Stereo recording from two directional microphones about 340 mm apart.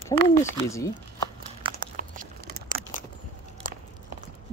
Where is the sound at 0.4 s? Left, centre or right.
Centre.